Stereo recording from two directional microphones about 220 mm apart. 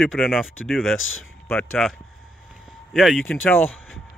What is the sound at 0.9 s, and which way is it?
Speech, 65° left (ahead or behind).